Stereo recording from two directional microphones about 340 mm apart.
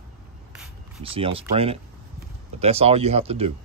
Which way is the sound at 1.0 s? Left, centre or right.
Centre.